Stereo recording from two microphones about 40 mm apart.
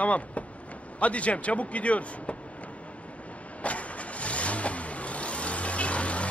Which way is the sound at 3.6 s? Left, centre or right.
Left.